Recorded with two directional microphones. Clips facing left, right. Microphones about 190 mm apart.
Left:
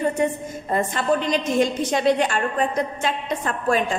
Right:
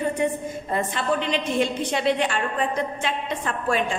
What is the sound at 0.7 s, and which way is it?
A woman's voice, 45° left (ahead or behind).